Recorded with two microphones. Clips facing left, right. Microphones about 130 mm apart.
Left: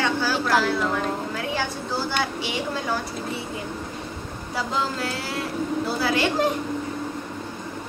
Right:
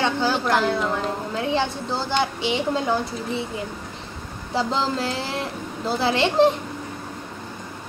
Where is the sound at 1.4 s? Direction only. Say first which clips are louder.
Right 4 dB; 20° right (ahead or behind).